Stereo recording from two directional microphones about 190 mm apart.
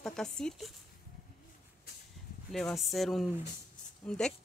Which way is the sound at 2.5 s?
Centre (ahead or behind).